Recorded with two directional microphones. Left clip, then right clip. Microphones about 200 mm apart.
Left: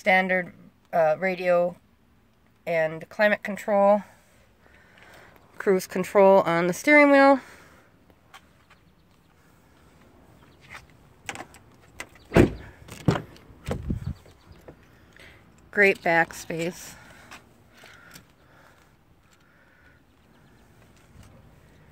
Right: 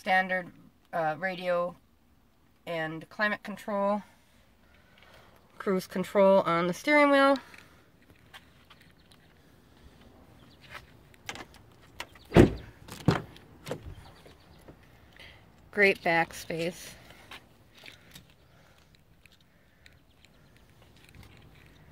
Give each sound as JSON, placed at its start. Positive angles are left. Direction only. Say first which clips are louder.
{"t": 0.0, "sound": "speech", "louder": "left 5 dB", "side_deg": 30}
{"t": 5.6, "sound": "speech", "louder": "left 7 dB", "side_deg": 25}
{"t": 11.2, "sound": "vehicle", "louder": "left 5 dB", "side_deg": 35}
{"t": 12.8, "sound": "power windows", "louder": "left 2 dB", "side_deg": 10}
{"t": 14.7, "sound": "a sound", "louder": "left 7 dB", "side_deg": 40}
{"t": 15.1, "sound": "speech", "louder": "left 1 dB", "side_deg": 5}